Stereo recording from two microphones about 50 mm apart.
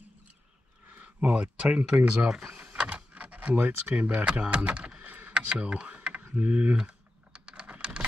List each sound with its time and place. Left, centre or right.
0.8 s speech: right
2.2 s speech: centre
2.5 s power windows: right
4.0 s speech: right
5.3 s a sound: right
6.4 s speech: right
6.8 s typing: right